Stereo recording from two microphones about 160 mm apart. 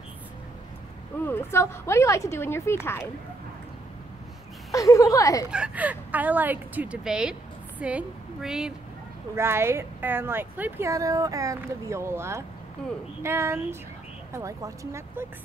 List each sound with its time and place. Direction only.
1.2 s a woman's voice: 15° left (ahead or behind)
4.7 s a woman's voice: 20° left (ahead or behind)
5.5 s a woman's voice: 10° right (ahead or behind)
9.3 s speech: 15° right (ahead or behind)